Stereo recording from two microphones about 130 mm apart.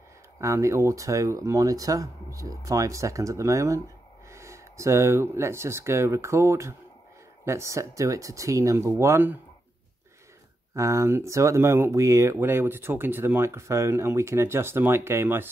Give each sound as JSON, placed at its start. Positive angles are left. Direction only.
{"t": 0.4, "sound": "speech", "side_deg": -25}
{"t": 10.7, "sound": "speech", "side_deg": -25}